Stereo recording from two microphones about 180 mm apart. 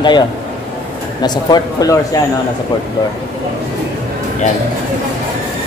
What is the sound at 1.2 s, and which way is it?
Speech, 25° left (ahead or behind).